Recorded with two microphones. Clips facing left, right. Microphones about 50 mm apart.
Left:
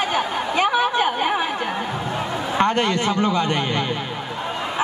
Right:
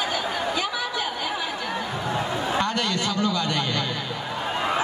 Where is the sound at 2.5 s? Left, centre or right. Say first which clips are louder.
Left 8 dB; left.